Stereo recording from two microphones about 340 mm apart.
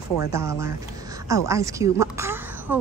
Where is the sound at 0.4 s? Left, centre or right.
Centre.